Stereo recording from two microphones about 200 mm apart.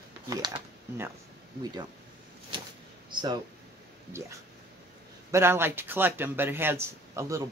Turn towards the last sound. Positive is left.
turn(degrees=-15)  # may be behind; listen again after turning